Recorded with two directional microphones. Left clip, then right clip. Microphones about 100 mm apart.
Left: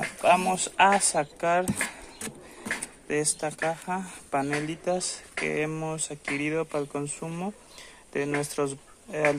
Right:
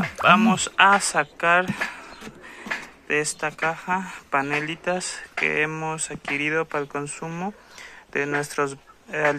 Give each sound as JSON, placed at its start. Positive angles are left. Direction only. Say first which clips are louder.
{"t": 0.2, "sound": "a woman's voice", "louder": "right 5 dB", "side_deg": 15}
{"t": 3.3, "sound": "a woman's voice", "louder": "right 4 dB", "side_deg": 10}